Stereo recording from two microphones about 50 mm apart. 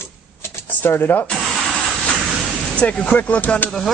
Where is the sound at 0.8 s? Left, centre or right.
Left.